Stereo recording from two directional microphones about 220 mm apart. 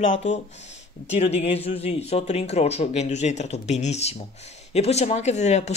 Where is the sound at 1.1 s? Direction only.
30° left (ahead or behind).